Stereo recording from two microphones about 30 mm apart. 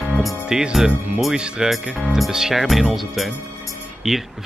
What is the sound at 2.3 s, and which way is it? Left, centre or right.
Speech, centre.